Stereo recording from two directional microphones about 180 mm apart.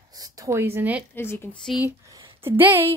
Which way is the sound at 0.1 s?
20° right (ahead or behind).